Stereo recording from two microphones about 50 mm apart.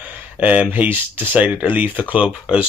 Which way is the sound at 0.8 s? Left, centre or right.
Right.